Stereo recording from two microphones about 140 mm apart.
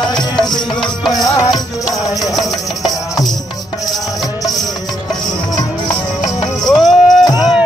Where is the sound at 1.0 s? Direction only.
Centre (ahead or behind).